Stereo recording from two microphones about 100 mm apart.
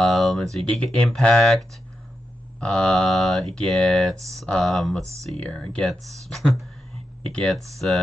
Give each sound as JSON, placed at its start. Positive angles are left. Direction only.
{"t": 0.0, "sound": "speech", "side_deg": 0}